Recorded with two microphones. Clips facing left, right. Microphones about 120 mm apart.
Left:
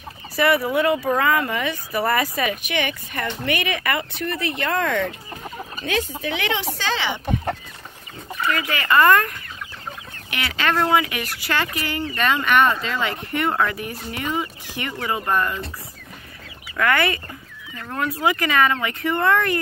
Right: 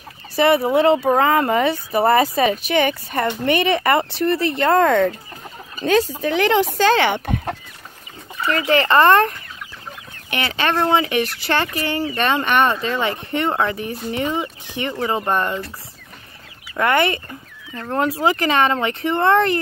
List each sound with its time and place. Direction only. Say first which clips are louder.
0.4 s speech: right 4 dB; 25° right (ahead or behind); by 7.2 s 55° right (ahead or behind)
8.5 s speech: right 5 dB; 30° right (ahead or behind)
10.3 s speech: right 2 dB; 25° right (ahead or behind)
16.7 s speech: right 3 dB; 25° right (ahead or behind)